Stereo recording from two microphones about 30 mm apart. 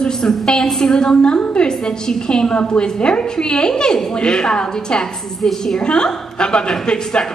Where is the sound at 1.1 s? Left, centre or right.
Left.